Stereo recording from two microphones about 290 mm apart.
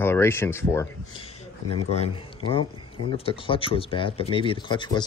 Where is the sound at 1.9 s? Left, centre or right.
Centre.